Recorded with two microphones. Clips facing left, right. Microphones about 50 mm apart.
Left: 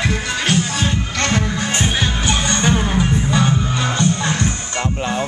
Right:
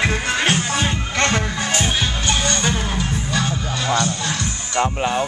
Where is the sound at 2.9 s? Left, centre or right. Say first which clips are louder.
Left 5 dB; centre.